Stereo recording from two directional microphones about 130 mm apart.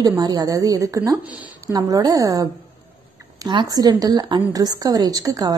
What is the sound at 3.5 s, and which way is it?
A woman's voice, 30° right (ahead or behind).